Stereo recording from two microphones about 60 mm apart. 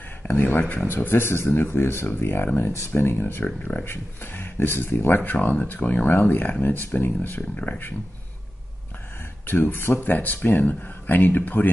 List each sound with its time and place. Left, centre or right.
0.2 s speech: left
9.5 s speech: left